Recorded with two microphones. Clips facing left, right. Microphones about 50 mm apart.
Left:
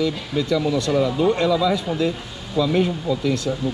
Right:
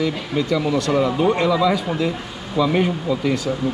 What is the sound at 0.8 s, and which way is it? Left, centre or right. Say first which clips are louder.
Speech: right 2 dB; right.